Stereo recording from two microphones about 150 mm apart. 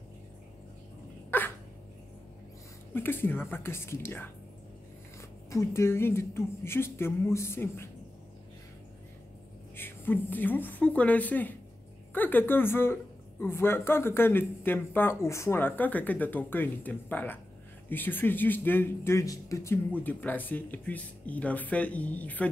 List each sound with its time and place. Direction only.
1.3 s dog: 15° left (ahead or behind)
2.9 s speech: 15° left (ahead or behind)
5.5 s speech: 20° left (ahead or behind)
9.8 s speech: 15° left (ahead or behind)